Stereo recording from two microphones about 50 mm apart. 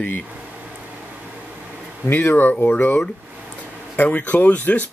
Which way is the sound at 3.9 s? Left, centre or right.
Left.